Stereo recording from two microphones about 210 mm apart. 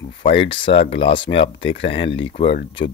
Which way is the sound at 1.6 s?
60° left (ahead or behind).